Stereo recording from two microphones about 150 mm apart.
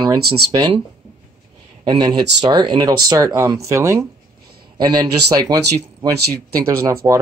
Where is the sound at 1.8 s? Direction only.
25° right (ahead or behind).